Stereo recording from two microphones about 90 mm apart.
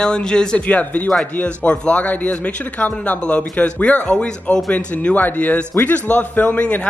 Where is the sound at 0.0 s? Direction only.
10° left (ahead or behind).